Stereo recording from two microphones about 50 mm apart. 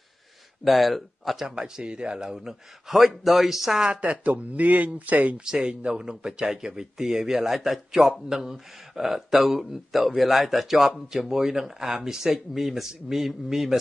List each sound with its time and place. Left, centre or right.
0.7 s speech: centre
3.8 s speech: right
5.4 s speech: centre
8.0 s speech: centre